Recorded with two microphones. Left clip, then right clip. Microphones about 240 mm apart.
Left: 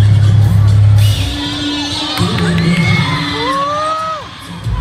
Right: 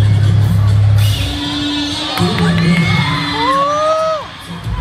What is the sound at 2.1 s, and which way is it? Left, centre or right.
Music, right.